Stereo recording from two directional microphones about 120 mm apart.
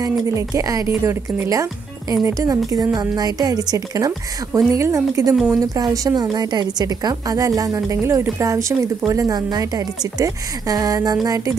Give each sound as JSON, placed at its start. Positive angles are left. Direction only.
{"t": 0.0, "sound": "a woman's voice", "side_deg": -25}
{"t": 5.3, "sound": "speech", "side_deg": -5}
{"t": 5.6, "sound": "a woman's voice", "side_deg": -30}